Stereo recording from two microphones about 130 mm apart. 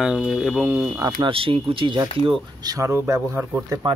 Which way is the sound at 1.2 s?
45° right (ahead or behind).